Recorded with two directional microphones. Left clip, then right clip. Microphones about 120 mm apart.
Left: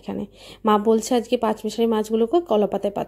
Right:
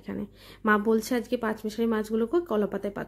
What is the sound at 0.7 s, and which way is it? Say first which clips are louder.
A woman's voice: left 6 dB; 30° left (ahead or behind).